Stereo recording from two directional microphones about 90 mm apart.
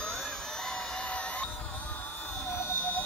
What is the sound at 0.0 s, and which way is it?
Music, 5° left (ahead or behind).